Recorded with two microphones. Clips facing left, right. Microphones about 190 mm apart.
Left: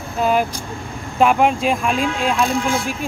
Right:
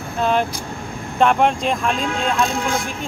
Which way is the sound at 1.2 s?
5° left (ahead or behind).